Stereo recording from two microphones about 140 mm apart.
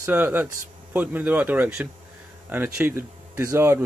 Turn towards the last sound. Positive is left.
turn(degrees=-20)  # may be behind; listen again after turning